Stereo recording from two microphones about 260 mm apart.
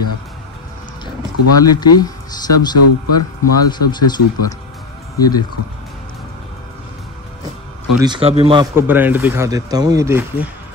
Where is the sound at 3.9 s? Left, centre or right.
Centre.